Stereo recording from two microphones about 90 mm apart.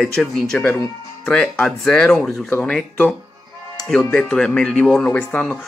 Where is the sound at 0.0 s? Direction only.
5° left (ahead or behind).